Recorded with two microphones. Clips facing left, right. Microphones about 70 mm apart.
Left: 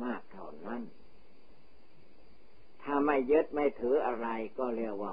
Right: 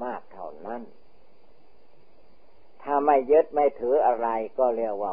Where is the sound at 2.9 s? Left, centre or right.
Centre.